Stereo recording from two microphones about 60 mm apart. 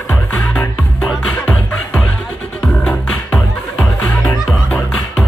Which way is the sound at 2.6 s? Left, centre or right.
Centre.